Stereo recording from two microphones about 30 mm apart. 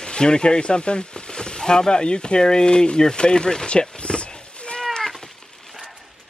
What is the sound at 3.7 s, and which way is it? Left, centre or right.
Cat, left.